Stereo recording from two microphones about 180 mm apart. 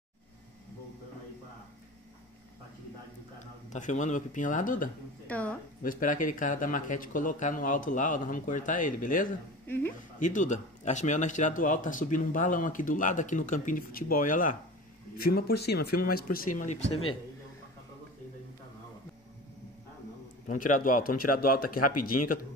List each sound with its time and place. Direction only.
3.7 s speech: 40° left (ahead or behind)
5.2 s a sound: 10° left (ahead or behind)
5.8 s speech: 50° left (ahead or behind)
9.7 s a sound: 10° left (ahead or behind)
10.1 s speech: 45° left (ahead or behind)
15.1 s speech: 60° left (ahead or behind)
20.4 s speech: 50° left (ahead or behind)